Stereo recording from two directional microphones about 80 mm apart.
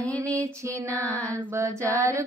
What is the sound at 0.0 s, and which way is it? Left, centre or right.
Music, centre.